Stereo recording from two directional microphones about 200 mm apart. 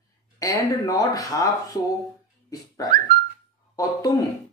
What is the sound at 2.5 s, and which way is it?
Dog, 20° left (ahead or behind).